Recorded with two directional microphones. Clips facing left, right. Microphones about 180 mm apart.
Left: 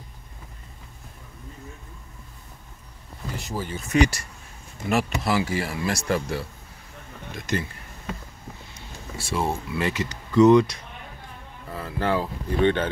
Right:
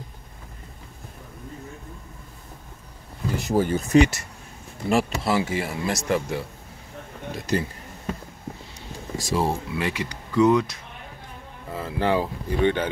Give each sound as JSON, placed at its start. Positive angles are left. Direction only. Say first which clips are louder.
{"t": 3.4, "sound": "speech", "louder": "right 11 dB", "side_deg": -50}
{"t": 3.9, "sound": "speech", "louder": "right 3 dB", "side_deg": -25}
{"t": 7.3, "sound": "speech", "louder": "right 3 dB", "side_deg": -35}
{"t": 8.7, "sound": "a sound", "louder": "right 5 dB", "side_deg": -40}
{"t": 9.4, "sound": "speech", "louder": "left 1 dB", "side_deg": -10}
{"t": 11.7, "sound": "speech", "louder": "right 2 dB", "side_deg": -20}